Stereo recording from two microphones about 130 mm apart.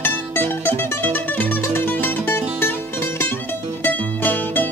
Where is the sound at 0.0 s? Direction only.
15° left (ahead or behind).